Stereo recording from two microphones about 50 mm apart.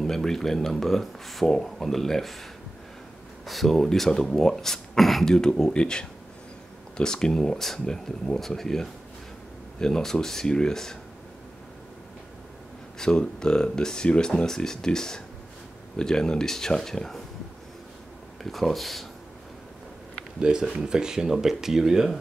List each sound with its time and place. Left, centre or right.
0.0 s speech: centre
3.4 s speech: centre
13.0 s speech: centre
18.4 s speech: centre
20.3 s speech: centre